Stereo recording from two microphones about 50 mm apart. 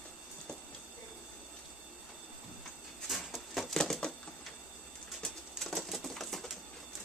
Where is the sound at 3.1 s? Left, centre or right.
Centre.